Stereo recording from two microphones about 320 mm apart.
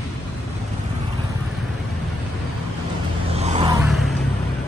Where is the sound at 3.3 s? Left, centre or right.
Centre.